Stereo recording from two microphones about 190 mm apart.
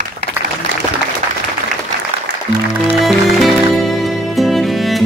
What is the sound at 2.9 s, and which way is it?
Music, centre (ahead or behind).